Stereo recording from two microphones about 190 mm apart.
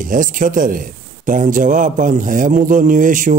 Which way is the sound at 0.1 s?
45° right (ahead or behind).